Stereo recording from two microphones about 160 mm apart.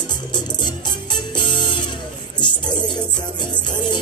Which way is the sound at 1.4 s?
30° left (ahead or behind).